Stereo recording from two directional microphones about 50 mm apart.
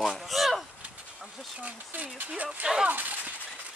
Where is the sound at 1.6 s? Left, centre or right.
Right.